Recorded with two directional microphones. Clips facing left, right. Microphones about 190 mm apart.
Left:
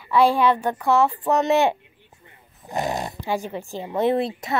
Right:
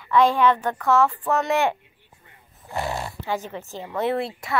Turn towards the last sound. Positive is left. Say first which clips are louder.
# left 4 dB
turn(degrees=20)  # may be behind; listen again after turning